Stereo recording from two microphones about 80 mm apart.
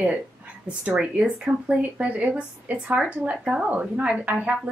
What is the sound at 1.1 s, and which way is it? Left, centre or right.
A woman's voice, centre.